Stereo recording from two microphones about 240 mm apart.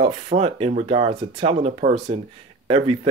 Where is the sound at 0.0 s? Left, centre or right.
Right.